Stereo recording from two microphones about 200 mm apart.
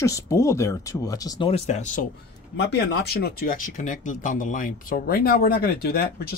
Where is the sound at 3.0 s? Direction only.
50° left (ahead or behind).